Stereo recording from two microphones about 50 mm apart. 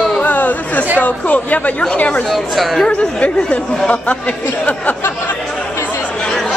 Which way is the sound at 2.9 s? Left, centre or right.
Left.